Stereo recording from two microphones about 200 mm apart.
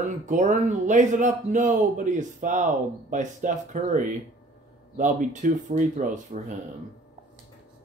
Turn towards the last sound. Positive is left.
turn(degrees=-40)  # may be behind; listen again after turning